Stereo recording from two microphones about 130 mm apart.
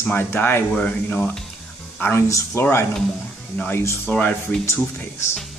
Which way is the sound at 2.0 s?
20° left (ahead or behind).